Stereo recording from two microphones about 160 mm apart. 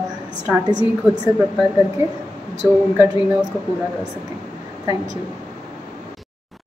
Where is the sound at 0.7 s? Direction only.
25° right (ahead or behind).